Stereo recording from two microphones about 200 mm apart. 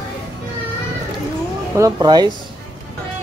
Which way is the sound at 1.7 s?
15° right (ahead or behind).